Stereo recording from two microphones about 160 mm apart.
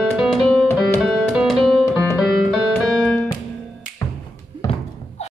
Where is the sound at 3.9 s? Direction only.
20° left (ahead or behind).